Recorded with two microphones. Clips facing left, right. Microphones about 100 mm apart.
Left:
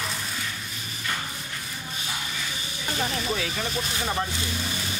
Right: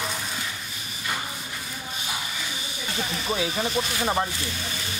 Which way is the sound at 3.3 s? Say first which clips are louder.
Right 3 dB; 20° right (ahead or behind).